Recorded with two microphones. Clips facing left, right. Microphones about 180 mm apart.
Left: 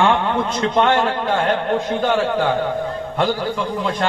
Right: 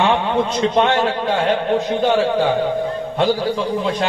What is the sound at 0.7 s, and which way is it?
A man's voice, 25° right (ahead or behind).